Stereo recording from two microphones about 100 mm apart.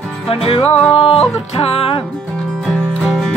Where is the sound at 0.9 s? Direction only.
70° left (ahead or behind).